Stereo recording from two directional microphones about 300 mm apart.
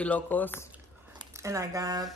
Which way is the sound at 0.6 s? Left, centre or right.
Centre.